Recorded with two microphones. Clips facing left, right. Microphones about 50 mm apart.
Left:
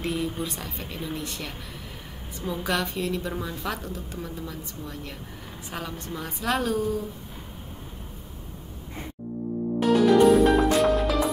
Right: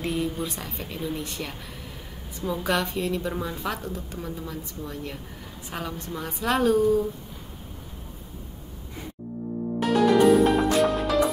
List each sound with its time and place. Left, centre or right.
0.0 s a woman's voice: centre
9.8 s music: centre